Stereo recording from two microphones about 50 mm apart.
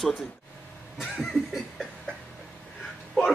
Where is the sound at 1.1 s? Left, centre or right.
Centre.